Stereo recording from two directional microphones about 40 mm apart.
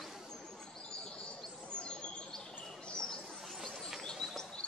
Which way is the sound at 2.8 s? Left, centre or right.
Centre.